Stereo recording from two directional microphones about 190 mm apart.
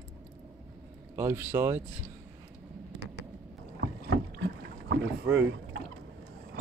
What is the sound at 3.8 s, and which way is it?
Boat, 65° right (ahead or behind).